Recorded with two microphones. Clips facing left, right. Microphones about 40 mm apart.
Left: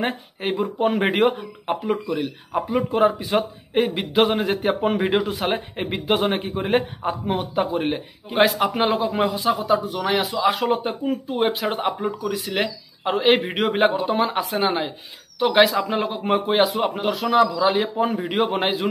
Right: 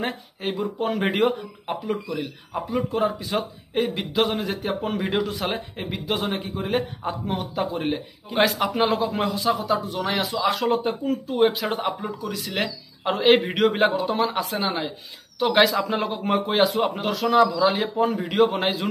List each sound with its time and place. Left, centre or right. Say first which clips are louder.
0.0 s a man's voice: left 3 dB; centre